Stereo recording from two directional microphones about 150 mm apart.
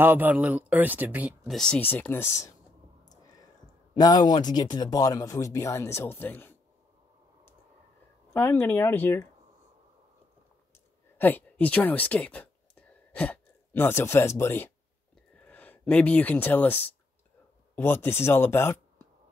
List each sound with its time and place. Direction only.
0.0 s speech: 15° right (ahead or behind)
1.5 s speech: 5° left (ahead or behind)
3.1 s a sound: 25° left (ahead or behind)
3.9 s speech: 25° left (ahead or behind)
8.3 s speech: 15° left (ahead or behind)
11.1 s speech: 10° left (ahead or behind)